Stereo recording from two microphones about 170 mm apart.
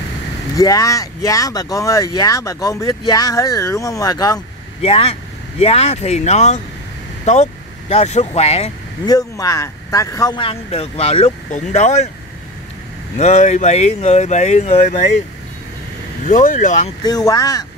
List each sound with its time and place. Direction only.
0.6 s speech: 20° left (ahead or behind)
4.8 s speech: 35° left (ahead or behind)
9.0 s speech: 20° left (ahead or behind); by 12.0 s 45° left (ahead or behind)
13.2 s speech: 40° left (ahead or behind)
16.3 s speech: 50° left (ahead or behind)
17.0 s speech: 20° left (ahead or behind)